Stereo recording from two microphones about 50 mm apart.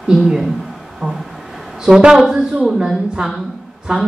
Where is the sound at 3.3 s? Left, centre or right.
Centre.